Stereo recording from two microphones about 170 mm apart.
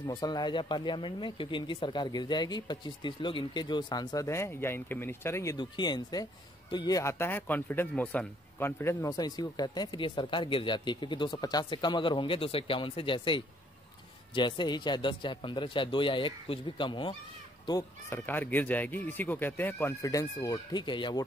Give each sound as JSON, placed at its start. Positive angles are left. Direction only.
{"t": 0.0, "sound": "speech", "side_deg": 25}
{"t": 17.6, "sound": "speech", "side_deg": 15}